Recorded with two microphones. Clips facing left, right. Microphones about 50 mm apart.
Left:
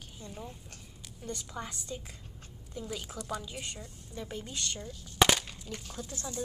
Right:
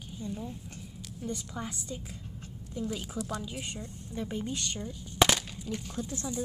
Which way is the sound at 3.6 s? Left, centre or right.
Right.